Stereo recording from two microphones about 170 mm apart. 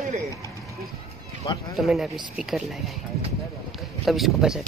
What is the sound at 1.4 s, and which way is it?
Speech, 30° left (ahead or behind).